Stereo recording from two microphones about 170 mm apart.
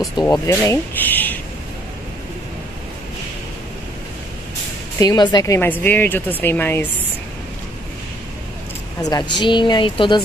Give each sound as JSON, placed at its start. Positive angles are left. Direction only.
{"t": 0.2, "sound": "speech", "side_deg": 20}
{"t": 4.9, "sound": "speech", "side_deg": 25}
{"t": 9.0, "sound": "speech", "side_deg": 25}